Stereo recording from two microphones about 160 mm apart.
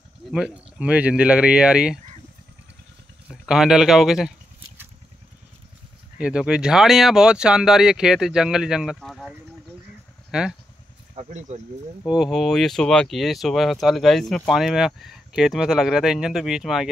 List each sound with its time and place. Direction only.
0.3 s speech: 5° right (ahead or behind)
3.3 s speech: 5° right (ahead or behind)
6.1 s speech: 5° right (ahead or behind)
10.3 s speech: 5° right (ahead or behind)
11.1 s speech: 50° right (ahead or behind)
12.1 s speech: centre (ahead or behind)